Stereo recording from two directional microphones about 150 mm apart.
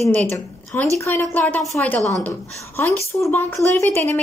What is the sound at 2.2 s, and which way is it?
Speech, 15° left (ahead or behind).